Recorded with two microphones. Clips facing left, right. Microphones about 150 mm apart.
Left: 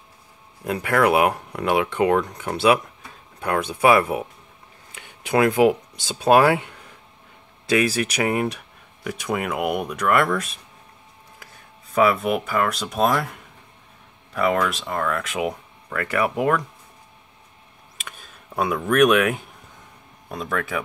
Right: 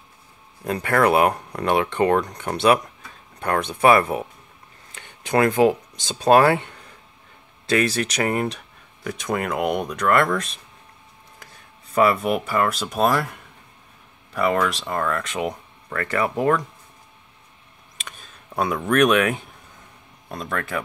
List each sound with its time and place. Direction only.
0.7 s speech: 5° left (ahead or behind)
11.9 s speech: centre (ahead or behind)
14.3 s speech: centre (ahead or behind)
17.9 s a sound: 5° left (ahead or behind)
20.2 s speech: 5° left (ahead or behind)